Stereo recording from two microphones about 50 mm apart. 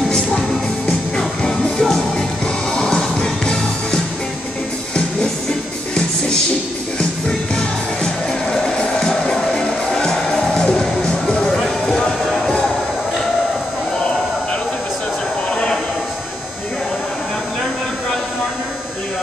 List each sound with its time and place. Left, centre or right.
0.1 s music: centre
7.0 s music: centre
15.5 s a sound: centre